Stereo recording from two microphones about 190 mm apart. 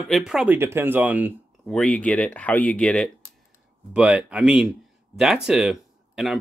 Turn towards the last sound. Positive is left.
turn(degrees=0)  # may be behind; listen again after turning